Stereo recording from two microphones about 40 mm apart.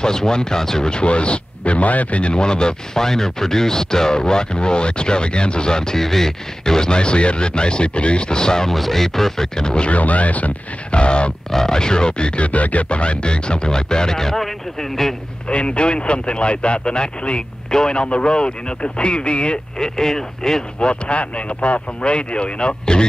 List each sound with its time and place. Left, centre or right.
0.0 s speech: centre; by 2.3 s left
2.3 s speech: left
8.6 s speech: centre
9.6 s speech: centre
9.8 s speech: left
11.5 s speech: centre
15.4 s speech: left
19.8 s speech: centre
20.9 s speech: left